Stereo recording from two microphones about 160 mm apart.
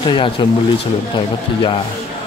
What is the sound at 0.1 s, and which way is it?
Speech, 30° left (ahead or behind).